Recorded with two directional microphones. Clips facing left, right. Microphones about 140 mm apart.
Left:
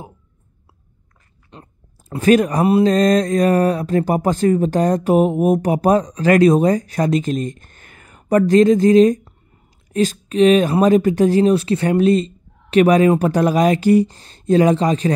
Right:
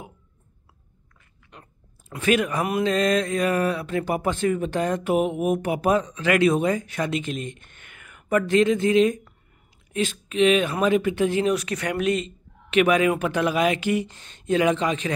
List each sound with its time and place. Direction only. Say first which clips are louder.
1.5 s speech: left 6 dB; 35° left (ahead or behind)